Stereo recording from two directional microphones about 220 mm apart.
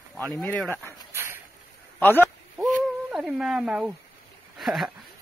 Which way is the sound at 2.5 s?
Centre (ahead or behind).